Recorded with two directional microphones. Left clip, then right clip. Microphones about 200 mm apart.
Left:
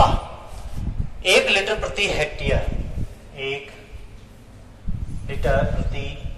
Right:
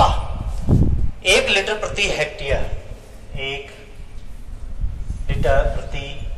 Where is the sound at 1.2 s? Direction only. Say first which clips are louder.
Right 1 dB; 20° left (ahead or behind).